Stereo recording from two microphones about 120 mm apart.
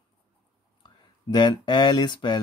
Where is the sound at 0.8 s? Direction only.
40° left (ahead or behind).